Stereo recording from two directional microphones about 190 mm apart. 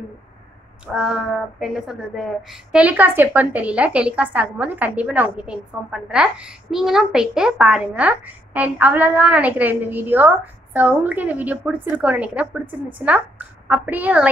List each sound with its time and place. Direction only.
0.9 s speech: 5° right (ahead or behind)